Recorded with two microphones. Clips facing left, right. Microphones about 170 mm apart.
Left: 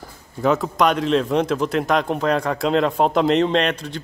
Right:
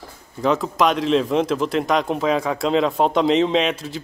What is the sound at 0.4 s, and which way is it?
Speech, centre (ahead or behind).